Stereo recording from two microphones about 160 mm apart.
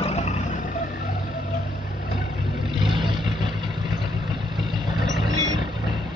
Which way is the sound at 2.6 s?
30° right (ahead or behind).